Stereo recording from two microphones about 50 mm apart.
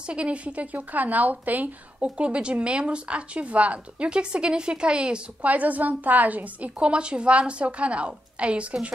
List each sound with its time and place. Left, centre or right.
0.0 s speech: right
2.0 s speech: right
5.5 s speech: right